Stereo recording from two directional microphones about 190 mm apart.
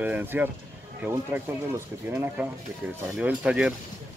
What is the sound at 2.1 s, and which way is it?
Speech, 10° right (ahead or behind).